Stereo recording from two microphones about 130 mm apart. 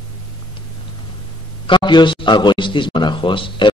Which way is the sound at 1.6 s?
35° left (ahead or behind).